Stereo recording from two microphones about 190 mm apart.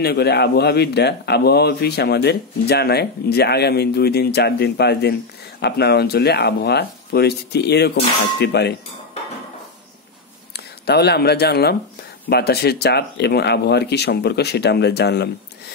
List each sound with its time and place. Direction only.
0.0 s a man's voice: 60° left (ahead or behind)
10.5 s a man's voice: 60° left (ahead or behind)